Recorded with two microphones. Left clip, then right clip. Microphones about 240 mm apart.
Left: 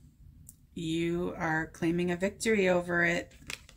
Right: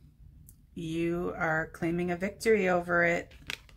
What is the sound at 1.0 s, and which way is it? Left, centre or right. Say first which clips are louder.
Speech: right 4 dB; centre.